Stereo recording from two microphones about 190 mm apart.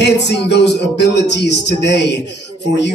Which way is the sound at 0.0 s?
65° left (ahead or behind).